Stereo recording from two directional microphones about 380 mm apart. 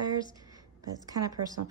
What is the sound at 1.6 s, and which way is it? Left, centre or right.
Speech, right.